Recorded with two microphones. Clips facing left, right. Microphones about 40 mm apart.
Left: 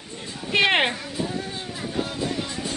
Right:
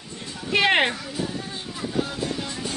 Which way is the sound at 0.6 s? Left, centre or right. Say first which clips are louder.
Even; centre.